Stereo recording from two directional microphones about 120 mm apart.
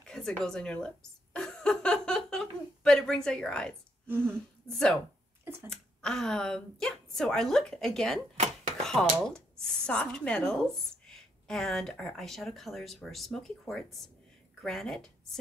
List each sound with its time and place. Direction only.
0.0 s a sound: 5° left (ahead or behind)
4.1 s speech: 20° right (ahead or behind)
4.6 s a woman's voice: 5° left (ahead or behind)
5.4 s speech: 20° right (ahead or behind)
5.7 s a woman's voice: 5° left (ahead or behind)